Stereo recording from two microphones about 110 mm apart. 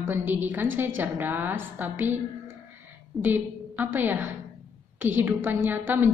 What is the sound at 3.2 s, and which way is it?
A woman's voice, 15° right (ahead or behind).